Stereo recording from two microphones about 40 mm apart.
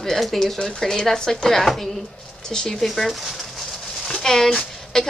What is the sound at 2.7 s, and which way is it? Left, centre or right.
Speech, centre.